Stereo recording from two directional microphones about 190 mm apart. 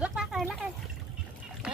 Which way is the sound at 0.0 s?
5° right (ahead or behind).